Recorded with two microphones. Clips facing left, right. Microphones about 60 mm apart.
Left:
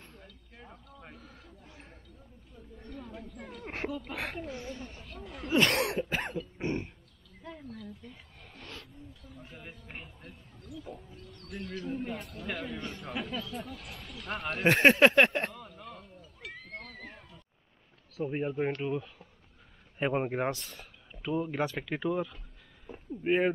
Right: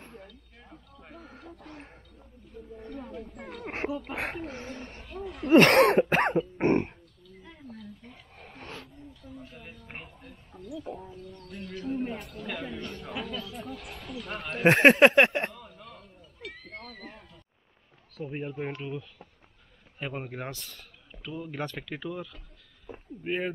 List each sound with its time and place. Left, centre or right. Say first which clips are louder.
0.6 s a sound: left 2 dB; centre
1.1 s a sound: right 6 dB; right
4.1 s speech: right 3 dB; right
5.0 s a man's voice: right 7 dB; centre
5.5 s cough: right 9 dB; right
8.0 s roaring cats: right 2 dB; right
9.4 s a man's voice: right 2 dB; centre
10.8 s speech: right 5 dB; right
11.4 s a man's voice: right 1 dB; centre
14.6 s speech: right 4 dB; right
15.1 s cat: right 2 dB; centre
18.1 s speech: left 3 dB; centre
20.0 s speech: left 7 dB; left
20.5 s speech: left 1 dB; centre